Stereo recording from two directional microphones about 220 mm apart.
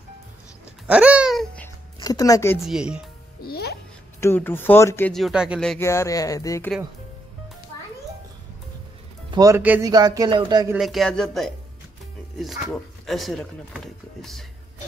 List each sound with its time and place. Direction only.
0.8 s babbling: 5° right (ahead or behind)
2.0 s speech: 15° left (ahead or behind)
2.6 s speech: 5° right (ahead or behind)
3.4 s music: 45° left (ahead or behind)
4.2 s speech: 10° left (ahead or behind)
9.3 s a man's voice: 15° right (ahead or behind)
10.8 s speech: centre (ahead or behind)
13.0 s speech: centre (ahead or behind)